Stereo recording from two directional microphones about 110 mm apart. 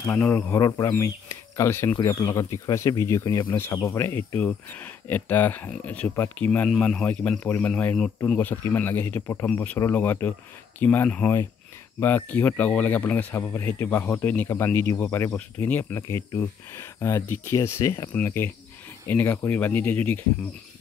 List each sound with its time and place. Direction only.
0.6 s speech: 30° left (ahead or behind)